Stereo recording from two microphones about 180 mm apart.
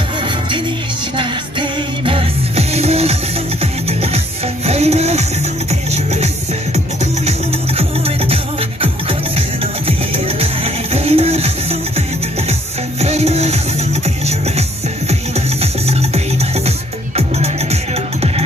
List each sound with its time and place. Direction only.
1.1 s music: 30° right (ahead or behind)
4.6 s music: 35° right (ahead or behind)
9.8 s music: 30° right (ahead or behind)
13.0 s music: 35° right (ahead or behind)
15.6 s music: 35° right (ahead or behind)